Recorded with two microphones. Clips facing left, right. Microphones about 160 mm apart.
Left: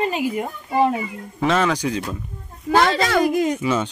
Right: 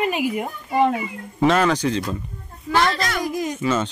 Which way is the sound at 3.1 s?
65° left (ahead or behind).